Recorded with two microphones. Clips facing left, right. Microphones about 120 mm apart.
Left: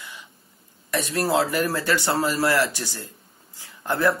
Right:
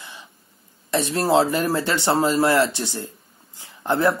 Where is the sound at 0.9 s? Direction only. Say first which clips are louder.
Right 4 dB; 25° right (ahead or behind).